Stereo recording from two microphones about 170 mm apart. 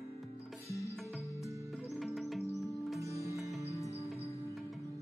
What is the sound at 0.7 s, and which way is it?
Music, 20° left (ahead or behind).